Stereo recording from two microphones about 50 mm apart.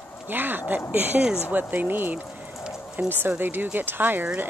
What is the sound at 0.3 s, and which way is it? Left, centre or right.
Speech, right.